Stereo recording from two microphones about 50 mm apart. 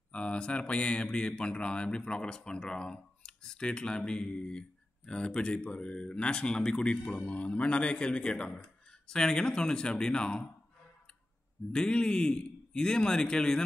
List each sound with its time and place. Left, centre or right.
0.1 s a man's voice: left
11.7 s a man's voice: centre